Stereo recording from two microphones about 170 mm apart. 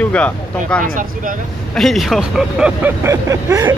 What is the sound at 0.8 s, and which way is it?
Speech, 50° right (ahead or behind).